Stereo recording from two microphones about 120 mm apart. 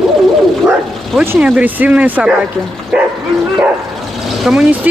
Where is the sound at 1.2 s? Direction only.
20° right (ahead or behind).